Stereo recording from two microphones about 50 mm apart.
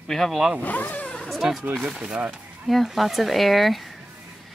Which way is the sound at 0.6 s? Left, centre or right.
Left.